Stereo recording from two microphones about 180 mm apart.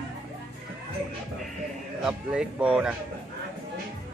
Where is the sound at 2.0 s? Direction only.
5° right (ahead or behind).